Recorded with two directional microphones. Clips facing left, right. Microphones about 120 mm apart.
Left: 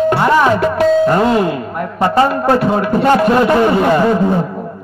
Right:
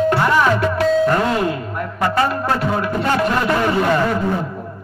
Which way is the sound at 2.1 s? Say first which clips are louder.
Left 8 dB; 25° left (ahead or behind).